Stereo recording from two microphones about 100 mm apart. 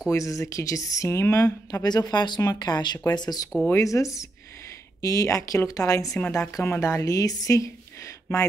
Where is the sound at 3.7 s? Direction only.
30° left (ahead or behind).